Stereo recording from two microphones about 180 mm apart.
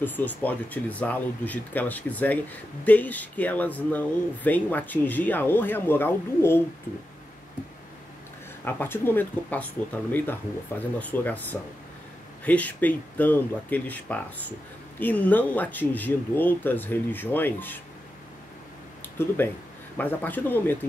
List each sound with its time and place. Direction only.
0.0 s speech: 10° left (ahead or behind)
8.6 s speech: 10° left (ahead or behind)
11.0 s speech: 10° left (ahead or behind)
19.1 s speech: 10° left (ahead or behind)